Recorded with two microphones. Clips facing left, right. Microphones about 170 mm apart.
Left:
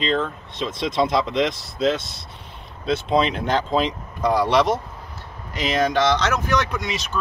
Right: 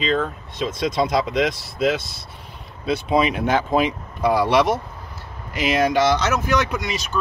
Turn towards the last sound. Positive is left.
turn(degrees=0)  # may be behind; listen again after turning